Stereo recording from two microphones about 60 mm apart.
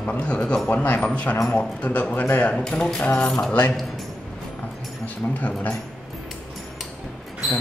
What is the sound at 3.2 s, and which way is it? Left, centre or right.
Speech, centre.